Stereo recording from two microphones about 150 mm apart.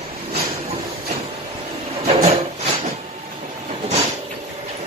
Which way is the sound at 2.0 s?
40° right (ahead or behind).